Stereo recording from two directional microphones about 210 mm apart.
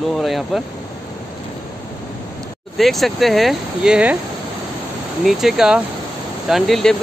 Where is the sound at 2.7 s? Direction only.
Centre (ahead or behind).